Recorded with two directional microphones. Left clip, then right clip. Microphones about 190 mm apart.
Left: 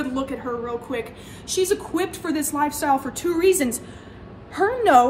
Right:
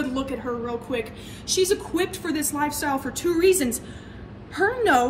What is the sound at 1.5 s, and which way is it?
A woman's voice, 15° left (ahead or behind).